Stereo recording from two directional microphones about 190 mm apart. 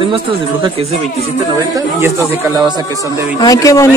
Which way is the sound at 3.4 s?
20° left (ahead or behind).